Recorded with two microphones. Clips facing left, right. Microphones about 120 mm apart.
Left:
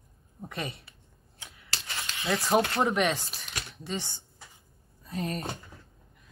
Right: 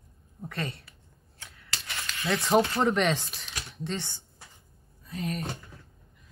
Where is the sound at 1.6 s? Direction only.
30° left (ahead or behind).